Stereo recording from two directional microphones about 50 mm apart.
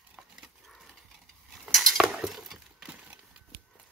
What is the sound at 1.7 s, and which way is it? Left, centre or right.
Cutlery, centre.